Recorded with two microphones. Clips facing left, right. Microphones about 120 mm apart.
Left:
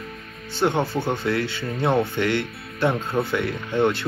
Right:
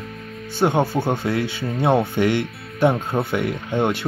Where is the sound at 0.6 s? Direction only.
25° right (ahead or behind).